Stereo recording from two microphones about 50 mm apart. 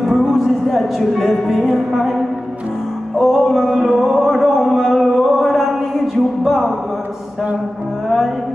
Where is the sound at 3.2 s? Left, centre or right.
Centre.